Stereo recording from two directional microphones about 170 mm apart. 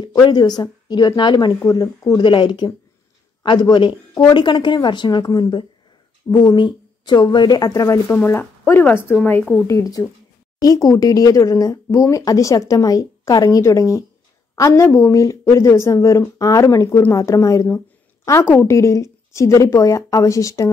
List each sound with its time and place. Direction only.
0.0 s a woman's voice: 25° left (ahead or behind); by 9.7 s 5° left (ahead or behind)
9.7 s a woman's voice: 20° left (ahead or behind)